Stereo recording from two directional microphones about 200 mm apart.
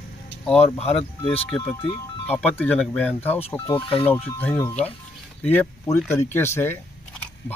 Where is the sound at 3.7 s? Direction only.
25° left (ahead or behind).